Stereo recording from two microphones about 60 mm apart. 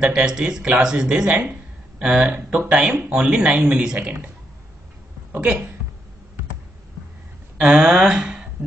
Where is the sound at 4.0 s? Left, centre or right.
Right.